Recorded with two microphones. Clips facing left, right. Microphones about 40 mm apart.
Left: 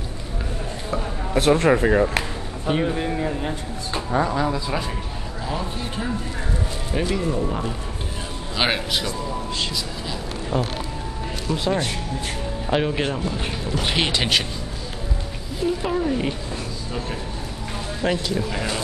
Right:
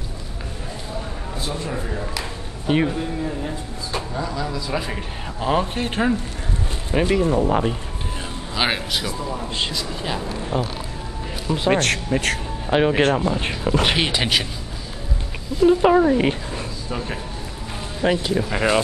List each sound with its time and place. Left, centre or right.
1.3 s speech: left
2.7 s speech: centre
4.1 s speech: left
5.4 s speech: right
6.9 s speech: right
8.5 s speech: centre
9.6 s a man's voice: right
11.7 s speech: right
12.7 s speech: centre
13.1 s speech: right
13.4 s speech: right
13.9 s speech: centre
15.6 s speech: right
18.0 s speech: right